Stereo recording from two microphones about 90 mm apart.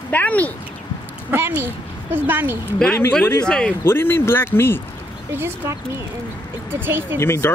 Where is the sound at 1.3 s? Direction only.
25° right (ahead or behind).